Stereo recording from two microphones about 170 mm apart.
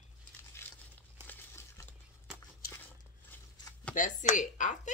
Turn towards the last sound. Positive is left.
turn(degrees=45)  # may be behind; listen again after turning